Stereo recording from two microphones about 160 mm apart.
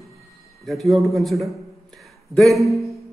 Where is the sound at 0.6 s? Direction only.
Centre (ahead or behind).